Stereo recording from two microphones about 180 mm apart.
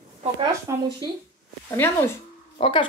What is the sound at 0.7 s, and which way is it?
Speech, 15° right (ahead or behind).